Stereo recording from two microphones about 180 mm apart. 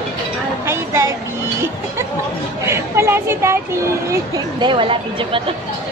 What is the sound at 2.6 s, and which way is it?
Speech, 15° right (ahead or behind).